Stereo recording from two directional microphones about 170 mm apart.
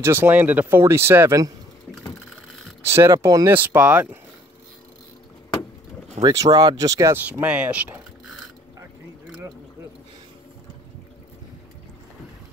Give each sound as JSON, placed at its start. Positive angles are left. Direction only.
{"t": 0.0, "sound": "speech", "side_deg": -15}
{"t": 2.8, "sound": "speech", "side_deg": -15}
{"t": 6.2, "sound": "speech", "side_deg": -20}